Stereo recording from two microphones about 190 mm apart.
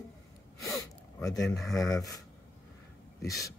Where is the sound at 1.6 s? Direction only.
Centre (ahead or behind).